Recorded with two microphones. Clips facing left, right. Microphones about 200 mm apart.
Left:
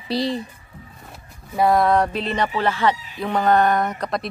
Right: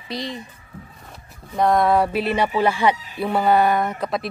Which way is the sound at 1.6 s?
Centre (ahead or behind).